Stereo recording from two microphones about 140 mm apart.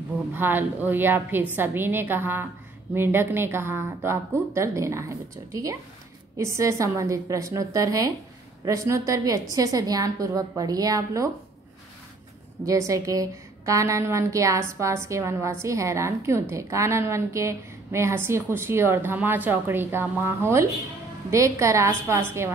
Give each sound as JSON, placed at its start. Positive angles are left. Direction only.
{"t": 0.3, "sound": "a woman's voice", "side_deg": -15}
{"t": 12.6, "sound": "a woman's voice", "side_deg": -25}